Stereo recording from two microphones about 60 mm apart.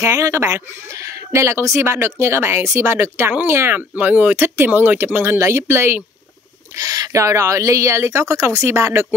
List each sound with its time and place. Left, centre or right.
0.0 s speech: right
3.0 s speech: right
3.7 s speech: right
6.7 s speech: right